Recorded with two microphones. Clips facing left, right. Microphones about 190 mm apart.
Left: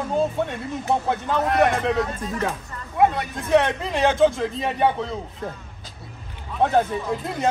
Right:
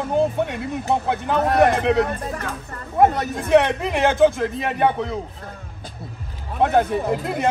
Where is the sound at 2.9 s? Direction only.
45° right (ahead or behind).